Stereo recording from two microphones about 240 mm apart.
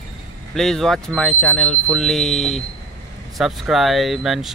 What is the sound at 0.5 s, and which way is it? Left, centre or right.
Speech, centre.